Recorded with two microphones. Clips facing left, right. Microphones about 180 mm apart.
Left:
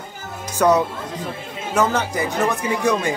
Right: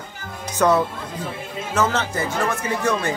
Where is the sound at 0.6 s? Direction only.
15° left (ahead or behind).